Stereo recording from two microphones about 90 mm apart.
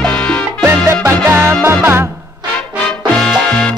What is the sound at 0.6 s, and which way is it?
Music, 25° right (ahead or behind).